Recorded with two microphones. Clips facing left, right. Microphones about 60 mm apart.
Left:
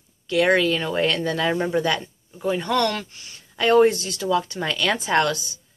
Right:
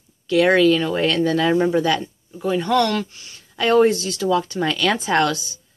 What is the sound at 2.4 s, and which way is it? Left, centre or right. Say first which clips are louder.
Speech: right 3 dB; centre.